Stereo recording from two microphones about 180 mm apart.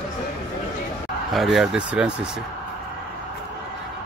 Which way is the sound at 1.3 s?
Centre (ahead or behind).